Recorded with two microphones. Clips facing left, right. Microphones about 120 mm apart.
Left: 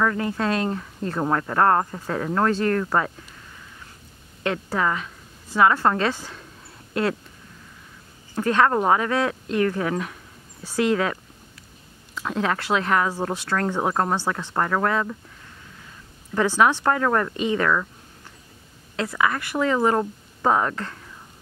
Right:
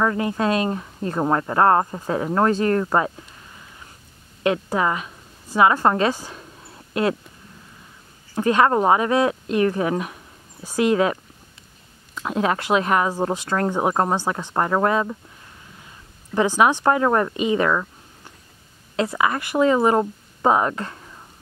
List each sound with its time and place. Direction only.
0.0 s speech: 20° right (ahead or behind)
4.4 s a woman's voice: 15° right (ahead or behind)
8.4 s speech: 15° right (ahead or behind)
12.2 s speech: 15° right (ahead or behind)
16.3 s speech: 15° right (ahead or behind)
18.9 s speech: 20° right (ahead or behind)